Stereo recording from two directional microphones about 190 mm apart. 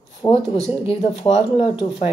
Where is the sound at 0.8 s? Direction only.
30° left (ahead or behind).